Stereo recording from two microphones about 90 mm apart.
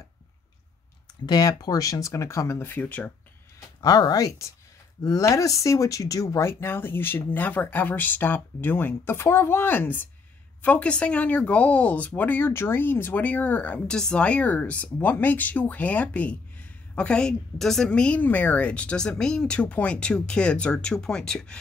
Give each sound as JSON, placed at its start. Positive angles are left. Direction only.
{"t": 1.2, "sound": "speech", "side_deg": 50}
{"t": 3.8, "sound": "speech", "side_deg": 45}